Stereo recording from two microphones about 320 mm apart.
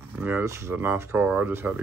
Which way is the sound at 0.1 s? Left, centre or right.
Centre.